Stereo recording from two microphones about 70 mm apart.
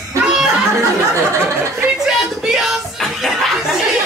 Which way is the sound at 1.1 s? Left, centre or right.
Right.